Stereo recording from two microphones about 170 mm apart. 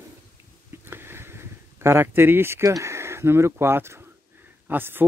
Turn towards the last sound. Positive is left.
turn(degrees=-10)  # may be behind; listen again after turning